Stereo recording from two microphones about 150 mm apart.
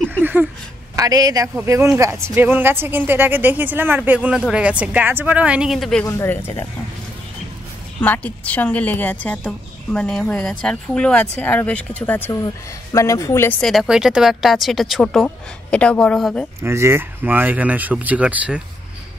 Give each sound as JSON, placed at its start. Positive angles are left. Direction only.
{"t": 0.2, "sound": "a sound", "side_deg": -10}
{"t": 0.9, "sound": "a man's voice", "side_deg": -25}
{"t": 6.0, "sound": "speech", "side_deg": 15}
{"t": 8.0, "sound": "a woman's voice", "side_deg": 10}
{"t": 13.6, "sound": "speech", "side_deg": 0}
{"t": 16.6, "sound": "a man's voice", "side_deg": -15}